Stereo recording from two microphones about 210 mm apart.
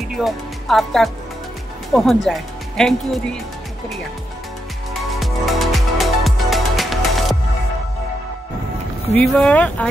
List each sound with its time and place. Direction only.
0.2 s speech: centre (ahead or behind)
5.2 s music: centre (ahead or behind)
9.1 s speech: centre (ahead or behind)